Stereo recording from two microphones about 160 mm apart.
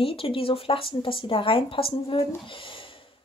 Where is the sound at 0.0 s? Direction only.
35° left (ahead or behind).